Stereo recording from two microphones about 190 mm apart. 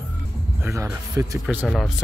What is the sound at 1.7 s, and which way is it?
Speech, centre (ahead or behind).